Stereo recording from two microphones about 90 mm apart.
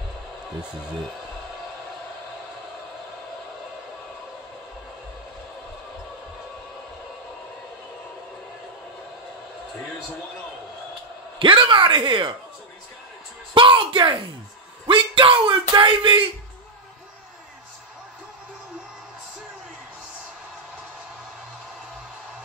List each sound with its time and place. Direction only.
11.3 s speech: 65° right (ahead or behind)
13.6 s speech: 65° right (ahead or behind)